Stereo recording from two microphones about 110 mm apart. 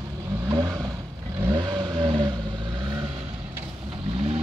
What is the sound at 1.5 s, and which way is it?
Vehicle, 40° right (ahead or behind).